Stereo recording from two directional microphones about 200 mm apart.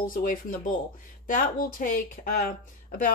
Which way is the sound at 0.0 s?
45° left (ahead or behind).